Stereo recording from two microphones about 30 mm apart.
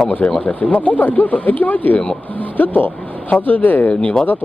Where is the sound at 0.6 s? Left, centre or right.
Left.